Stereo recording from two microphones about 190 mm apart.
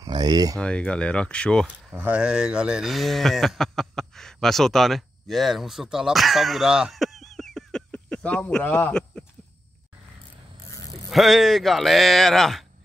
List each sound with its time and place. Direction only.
0.0 s speech: 20° right (ahead or behind)
0.6 s speech: 5° left (ahead or behind)
2.0 s speech: 5° right (ahead or behind)
11.1 s speech: centre (ahead or behind)